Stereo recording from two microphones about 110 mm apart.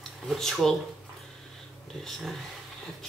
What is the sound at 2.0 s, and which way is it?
Speech, 5° left (ahead or behind).